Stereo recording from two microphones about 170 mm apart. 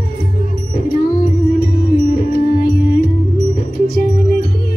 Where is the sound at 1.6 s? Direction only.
60° left (ahead or behind).